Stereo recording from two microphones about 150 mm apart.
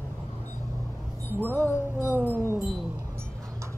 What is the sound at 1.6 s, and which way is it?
Wind chime, 15° left (ahead or behind).